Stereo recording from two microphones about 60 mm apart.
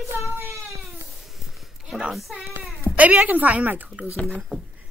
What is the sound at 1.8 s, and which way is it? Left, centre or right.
Speech, centre.